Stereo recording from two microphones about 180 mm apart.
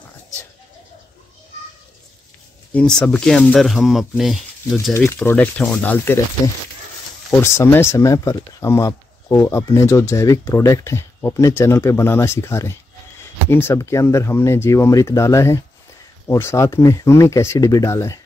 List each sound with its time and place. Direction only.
2.7 s speech: 5° left (ahead or behind)
5.2 s speech: 10° left (ahead or behind)
7.5 s speech: 15° left (ahead or behind)